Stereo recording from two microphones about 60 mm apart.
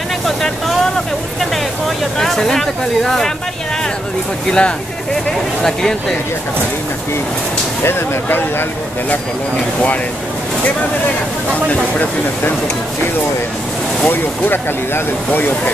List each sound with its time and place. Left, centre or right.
0.4 s a sound: centre
2.1 s speech: centre
4.5 s speech: centre
7.8 s speech: left
14.0 s speech: left